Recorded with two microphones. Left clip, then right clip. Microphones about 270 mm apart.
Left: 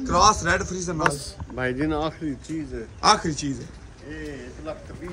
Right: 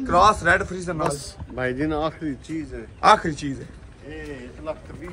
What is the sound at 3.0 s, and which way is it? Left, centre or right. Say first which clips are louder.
Speech: right 3 dB; centre.